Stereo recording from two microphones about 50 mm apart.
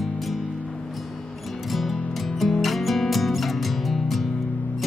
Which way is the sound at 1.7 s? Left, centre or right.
Centre.